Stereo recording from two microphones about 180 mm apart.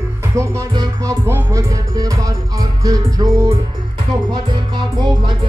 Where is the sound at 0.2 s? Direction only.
15° right (ahead or behind).